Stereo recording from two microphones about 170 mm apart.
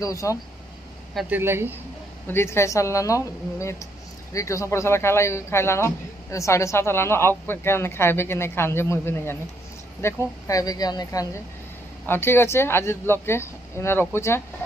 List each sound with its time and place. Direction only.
0.0 s speech: 20° left (ahead or behind)
1.3 s speech: 15° right (ahead or behind)
2.2 s speech: 15° left (ahead or behind)